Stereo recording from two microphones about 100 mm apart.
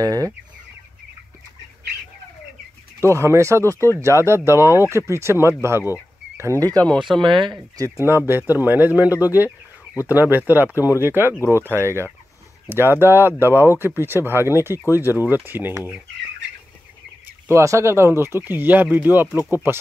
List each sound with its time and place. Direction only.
0.0 s speech: 40° right (ahead or behind)
3.0 s speech: 25° right (ahead or behind)
6.7 s speech: 15° left (ahead or behind)
7.2 s speech: 50° right (ahead or behind)
7.7 s speech: 30° right (ahead or behind)
11.3 s speech: 25° left (ahead or behind)
11.7 s speech: 25° right (ahead or behind)
17.5 s speech: 30° right (ahead or behind)